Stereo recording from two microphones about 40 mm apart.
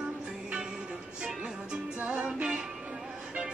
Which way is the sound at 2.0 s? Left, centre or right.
Right.